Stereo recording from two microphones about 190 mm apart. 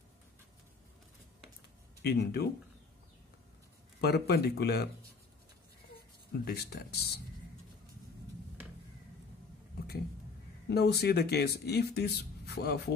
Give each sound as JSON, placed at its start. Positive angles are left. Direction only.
{"t": 2.0, "sound": "speech", "side_deg": 60}
{"t": 4.0, "sound": "speech", "side_deg": 55}
{"t": 6.4, "sound": "speech", "side_deg": 55}
{"t": 10.7, "sound": "speech", "side_deg": 60}